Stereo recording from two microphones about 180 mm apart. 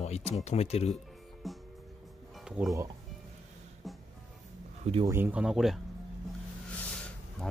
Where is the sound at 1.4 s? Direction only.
Centre (ahead or behind).